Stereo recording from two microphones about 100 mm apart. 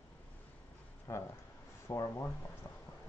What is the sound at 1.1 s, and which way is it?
Speech, 25° left (ahead or behind).